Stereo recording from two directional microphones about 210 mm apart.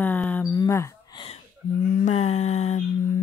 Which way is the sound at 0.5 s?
15° left (ahead or behind).